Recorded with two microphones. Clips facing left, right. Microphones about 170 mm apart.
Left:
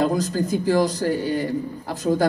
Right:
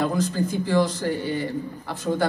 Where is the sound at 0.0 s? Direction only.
40° left (ahead or behind).